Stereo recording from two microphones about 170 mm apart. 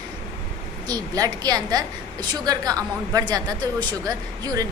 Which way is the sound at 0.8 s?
20° right (ahead or behind).